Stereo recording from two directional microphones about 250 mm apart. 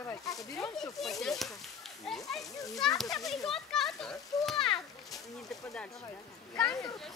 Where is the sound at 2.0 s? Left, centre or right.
Centre.